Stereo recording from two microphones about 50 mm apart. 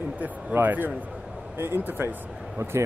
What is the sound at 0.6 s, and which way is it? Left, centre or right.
Speech, right.